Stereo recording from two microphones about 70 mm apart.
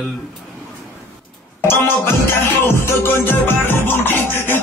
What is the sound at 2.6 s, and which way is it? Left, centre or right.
Music, left.